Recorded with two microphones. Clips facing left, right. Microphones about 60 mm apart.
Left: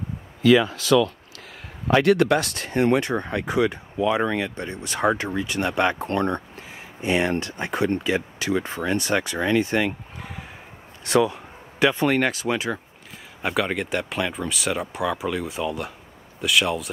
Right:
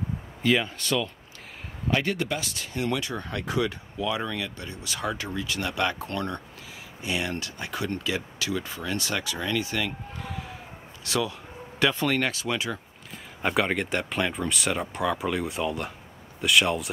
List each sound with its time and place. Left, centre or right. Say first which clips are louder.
0.4 s speech: left 8 dB; left
1.9 s speech: left 9 dB; left
3.2 s speech: left 5 dB; left
11.1 s speech: left 8 dB; left
13.4 s speech: left 1 dB; centre